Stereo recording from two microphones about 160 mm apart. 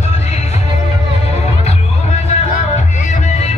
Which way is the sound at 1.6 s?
40° left (ahead or behind).